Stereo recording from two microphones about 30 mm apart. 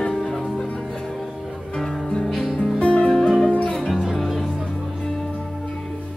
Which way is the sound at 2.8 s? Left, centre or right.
Left.